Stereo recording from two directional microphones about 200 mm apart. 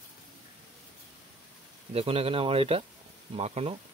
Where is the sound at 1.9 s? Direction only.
30° right (ahead or behind).